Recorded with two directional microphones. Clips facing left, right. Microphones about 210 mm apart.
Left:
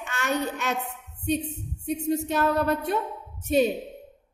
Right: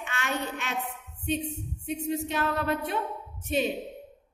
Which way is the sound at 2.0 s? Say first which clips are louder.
Left 5 dB; 40° left (ahead or behind).